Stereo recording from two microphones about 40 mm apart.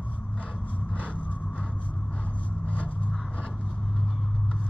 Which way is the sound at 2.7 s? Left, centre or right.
Left.